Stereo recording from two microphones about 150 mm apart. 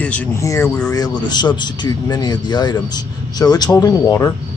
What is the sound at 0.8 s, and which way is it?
Speech, 25° left (ahead or behind).